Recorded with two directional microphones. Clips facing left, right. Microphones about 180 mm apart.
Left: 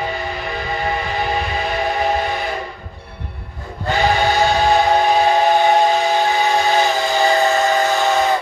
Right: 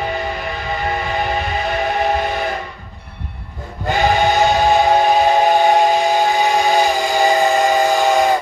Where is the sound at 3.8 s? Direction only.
15° right (ahead or behind).